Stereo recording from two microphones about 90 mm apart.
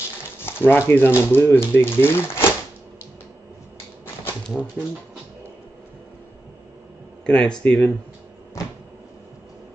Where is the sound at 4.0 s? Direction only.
25° left (ahead or behind).